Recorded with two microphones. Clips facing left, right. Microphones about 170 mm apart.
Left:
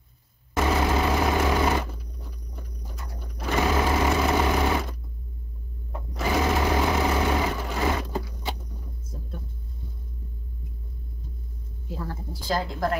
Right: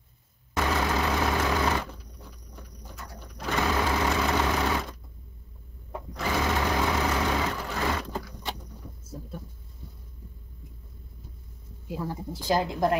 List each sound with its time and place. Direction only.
0.6 s vehicle: 15° left (ahead or behind)
3.3 s sewing machine: 15° left (ahead or behind)
6.1 s sewing machine: 15° left (ahead or behind)
11.9 s speech: 15° right (ahead or behind)